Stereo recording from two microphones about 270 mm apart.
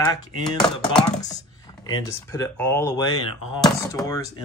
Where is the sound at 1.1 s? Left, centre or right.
Centre.